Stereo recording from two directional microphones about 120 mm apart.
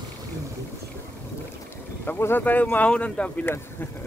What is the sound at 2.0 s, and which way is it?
Speech, 20° left (ahead or behind).